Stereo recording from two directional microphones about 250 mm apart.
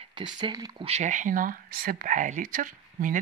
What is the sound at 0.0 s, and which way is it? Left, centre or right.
Speech, centre.